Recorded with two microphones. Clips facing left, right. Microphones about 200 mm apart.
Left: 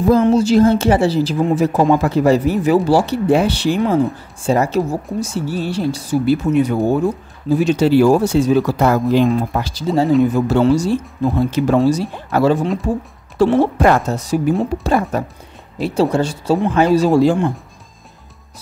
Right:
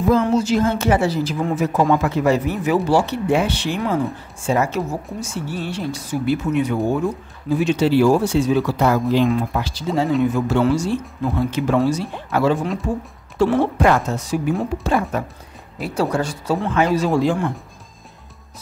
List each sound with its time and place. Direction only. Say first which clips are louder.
0.2 s a woman's voice: left 6 dB; 30° left (ahead or behind)
15.8 s speech: left 5 dB; 25° left (ahead or behind)